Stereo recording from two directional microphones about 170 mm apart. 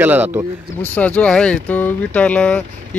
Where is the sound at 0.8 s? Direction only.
10° left (ahead or behind).